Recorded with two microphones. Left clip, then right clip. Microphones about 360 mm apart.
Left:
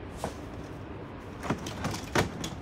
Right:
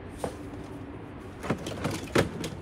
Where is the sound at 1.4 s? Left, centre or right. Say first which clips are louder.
Right 2 dB; centre.